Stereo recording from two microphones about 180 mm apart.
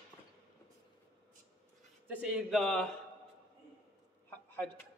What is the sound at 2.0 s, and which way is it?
Speech, 10° right (ahead or behind).